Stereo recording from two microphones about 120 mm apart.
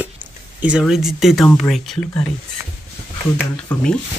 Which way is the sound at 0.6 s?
10° right (ahead or behind).